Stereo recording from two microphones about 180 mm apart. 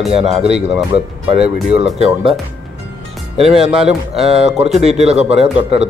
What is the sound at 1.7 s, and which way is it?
Speech, 35° right (ahead or behind).